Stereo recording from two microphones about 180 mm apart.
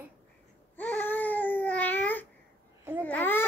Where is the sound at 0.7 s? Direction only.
10° left (ahead or behind).